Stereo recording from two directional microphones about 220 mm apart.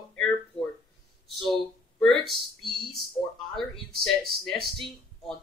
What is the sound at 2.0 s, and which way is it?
Speech, centre (ahead or behind).